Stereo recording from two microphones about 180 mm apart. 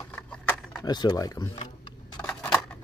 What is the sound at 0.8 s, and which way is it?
Speech, 25° left (ahead or behind).